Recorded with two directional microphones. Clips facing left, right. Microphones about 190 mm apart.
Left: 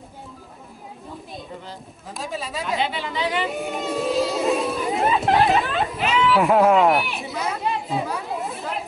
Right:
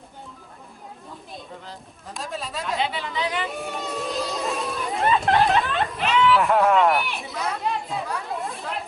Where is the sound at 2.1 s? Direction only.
Centre (ahead or behind).